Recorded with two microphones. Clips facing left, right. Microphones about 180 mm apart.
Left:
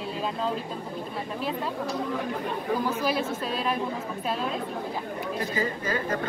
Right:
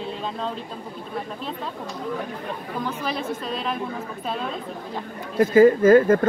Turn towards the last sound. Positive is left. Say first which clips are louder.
# right 14 dB
turn(degrees=-50)  # may be behind; listen again after turning